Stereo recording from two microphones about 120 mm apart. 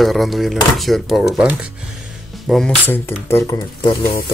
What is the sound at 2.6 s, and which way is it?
Speech, 15° left (ahead or behind).